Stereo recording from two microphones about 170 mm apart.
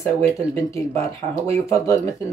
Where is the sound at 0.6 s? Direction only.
20° left (ahead or behind).